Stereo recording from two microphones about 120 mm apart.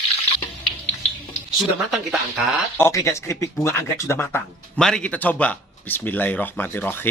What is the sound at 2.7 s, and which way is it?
Speech, 20° left (ahead or behind).